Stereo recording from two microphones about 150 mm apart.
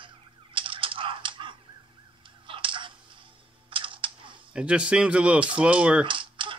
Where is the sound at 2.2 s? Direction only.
35° right (ahead or behind).